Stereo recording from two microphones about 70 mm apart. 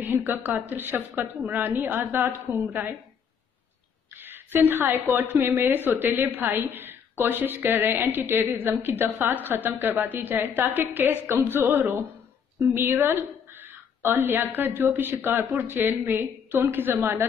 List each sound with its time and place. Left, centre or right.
0.0 s a woman's voice: right
4.2 s a sound: right
5.1 s a woman's voice: right